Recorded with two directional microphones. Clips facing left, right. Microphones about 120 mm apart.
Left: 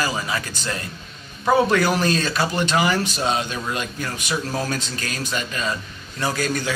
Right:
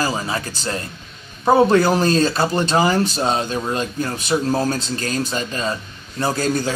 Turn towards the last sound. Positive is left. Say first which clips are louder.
# right 3 dB
turn(degrees=-30)  # may be behind; listen again after turning